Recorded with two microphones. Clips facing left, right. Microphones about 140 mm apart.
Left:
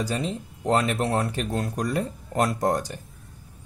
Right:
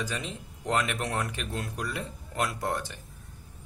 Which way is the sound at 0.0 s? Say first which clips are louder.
Left 7 dB; 35° left (ahead or behind).